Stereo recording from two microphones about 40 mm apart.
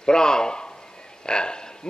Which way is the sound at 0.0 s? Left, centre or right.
Centre.